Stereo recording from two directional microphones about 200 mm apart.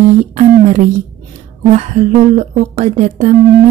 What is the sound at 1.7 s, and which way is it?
Speech, 35° right (ahead or behind).